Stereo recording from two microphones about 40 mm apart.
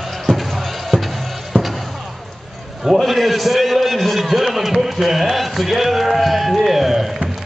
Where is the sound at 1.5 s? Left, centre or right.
Left.